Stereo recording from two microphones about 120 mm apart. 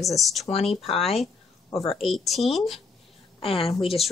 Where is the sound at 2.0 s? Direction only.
Centre (ahead or behind).